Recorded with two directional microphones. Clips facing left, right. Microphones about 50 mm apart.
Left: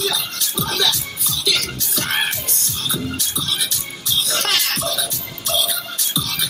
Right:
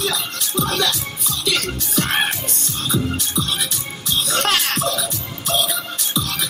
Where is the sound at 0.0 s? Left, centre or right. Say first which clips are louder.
Even; right.